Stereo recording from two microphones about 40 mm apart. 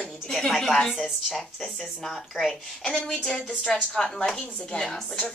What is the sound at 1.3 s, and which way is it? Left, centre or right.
Speech, centre.